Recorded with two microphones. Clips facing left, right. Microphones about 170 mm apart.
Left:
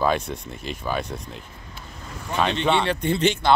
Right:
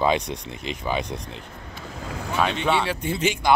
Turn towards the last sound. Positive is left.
turn(degrees=-10)  # may be behind; listen again after turning